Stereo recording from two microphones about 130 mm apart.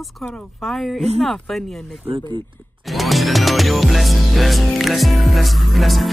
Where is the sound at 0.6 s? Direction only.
Centre (ahead or behind).